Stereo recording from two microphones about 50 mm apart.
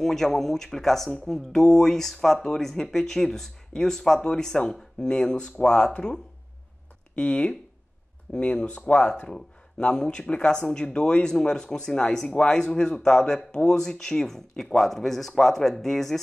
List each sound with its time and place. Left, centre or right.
0.0 s speech: centre